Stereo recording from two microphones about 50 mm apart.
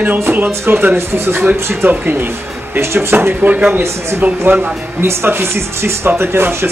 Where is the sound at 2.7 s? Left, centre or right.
Right.